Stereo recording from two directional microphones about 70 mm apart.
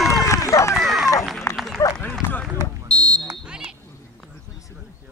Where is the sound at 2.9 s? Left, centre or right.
Centre.